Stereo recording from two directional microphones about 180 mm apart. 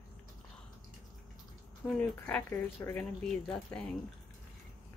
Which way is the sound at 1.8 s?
5° left (ahead or behind).